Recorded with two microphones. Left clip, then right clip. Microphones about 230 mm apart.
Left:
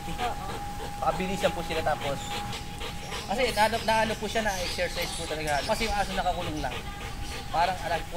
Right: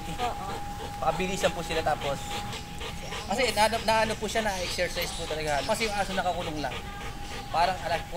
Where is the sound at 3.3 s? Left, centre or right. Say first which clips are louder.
Even; right.